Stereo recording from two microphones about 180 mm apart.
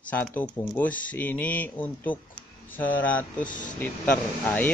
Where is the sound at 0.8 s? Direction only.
10° left (ahead or behind).